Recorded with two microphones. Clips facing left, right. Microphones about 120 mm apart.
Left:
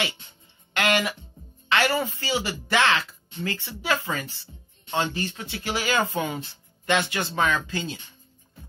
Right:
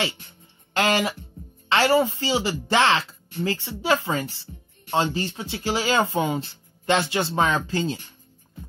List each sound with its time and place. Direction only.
0.7 s speech: 30° right (ahead or behind)